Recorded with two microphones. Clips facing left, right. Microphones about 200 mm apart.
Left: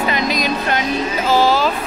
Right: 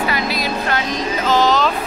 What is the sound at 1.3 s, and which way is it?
Speech, 10° left (ahead or behind).